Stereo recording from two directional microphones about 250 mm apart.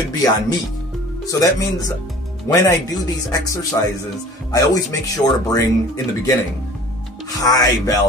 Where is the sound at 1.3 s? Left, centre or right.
Centre.